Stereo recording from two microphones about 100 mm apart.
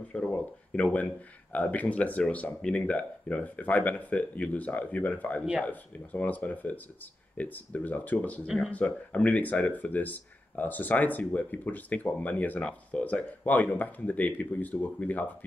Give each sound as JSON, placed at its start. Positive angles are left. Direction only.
{"t": 0.1, "sound": "speech", "side_deg": 10}